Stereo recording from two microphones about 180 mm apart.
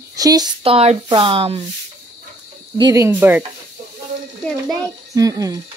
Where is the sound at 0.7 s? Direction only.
30° right (ahead or behind).